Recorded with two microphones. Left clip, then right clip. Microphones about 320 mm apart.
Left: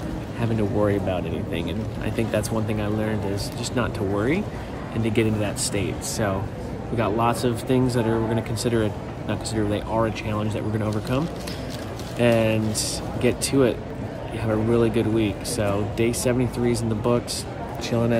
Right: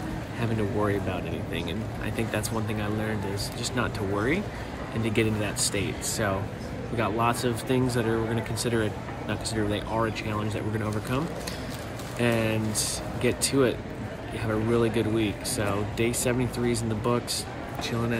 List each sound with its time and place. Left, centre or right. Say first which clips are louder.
0.4 s speech: left 5 dB; centre
12.2 s speech: left 6 dB; centre